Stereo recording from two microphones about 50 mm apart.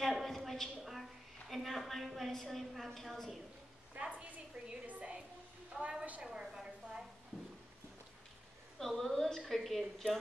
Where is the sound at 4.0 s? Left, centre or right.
Right.